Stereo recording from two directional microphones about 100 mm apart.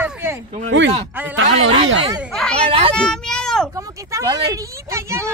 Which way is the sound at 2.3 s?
10° left (ahead or behind).